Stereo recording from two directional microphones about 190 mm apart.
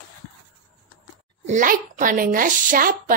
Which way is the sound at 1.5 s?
40° right (ahead or behind).